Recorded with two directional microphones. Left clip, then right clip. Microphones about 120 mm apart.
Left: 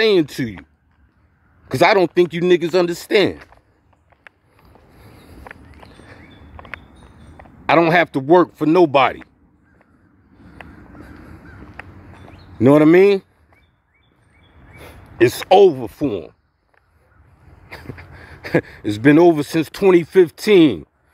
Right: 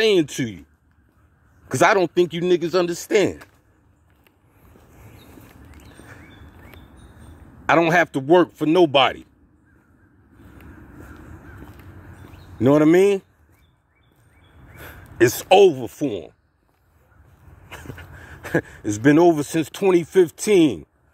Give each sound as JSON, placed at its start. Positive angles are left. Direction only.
{"t": 0.0, "sound": "speech", "side_deg": 30}
{"t": 1.7, "sound": "speech", "side_deg": 35}
{"t": 7.9, "sound": "speech", "side_deg": 30}
{"t": 12.5, "sound": "speech", "side_deg": 50}
{"t": 14.8, "sound": "a sound", "side_deg": 30}
{"t": 15.5, "sound": "speech", "side_deg": 20}
{"t": 16.0, "sound": "speech", "side_deg": 50}
{"t": 18.3, "sound": "a sound", "side_deg": 90}
{"t": 18.9, "sound": "speech", "side_deg": 35}